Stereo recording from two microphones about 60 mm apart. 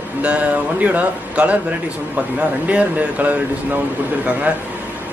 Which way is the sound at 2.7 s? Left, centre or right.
Right.